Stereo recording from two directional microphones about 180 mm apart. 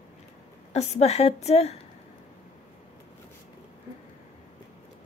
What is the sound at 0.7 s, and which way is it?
Speech, 40° left (ahead or behind).